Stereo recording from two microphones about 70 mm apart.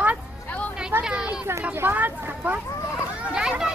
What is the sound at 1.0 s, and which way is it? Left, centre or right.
Speech, centre.